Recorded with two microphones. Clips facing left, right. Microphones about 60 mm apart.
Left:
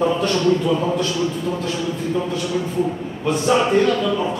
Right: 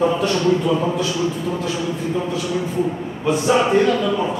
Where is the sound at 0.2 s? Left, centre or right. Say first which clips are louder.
Even; centre.